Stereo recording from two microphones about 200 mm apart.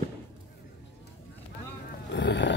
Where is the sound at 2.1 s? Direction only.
60° left (ahead or behind).